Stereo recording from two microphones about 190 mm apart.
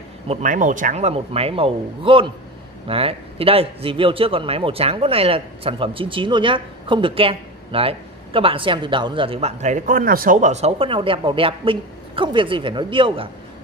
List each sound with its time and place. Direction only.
0.3 s a man's voice: 40° right (ahead or behind)